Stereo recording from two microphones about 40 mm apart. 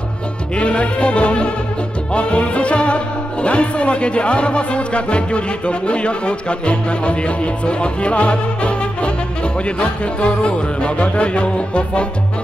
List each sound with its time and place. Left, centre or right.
0.6 s music: left
3.4 s speech: left